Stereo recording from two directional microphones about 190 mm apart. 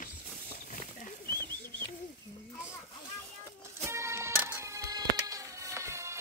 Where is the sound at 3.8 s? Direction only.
15° right (ahead or behind).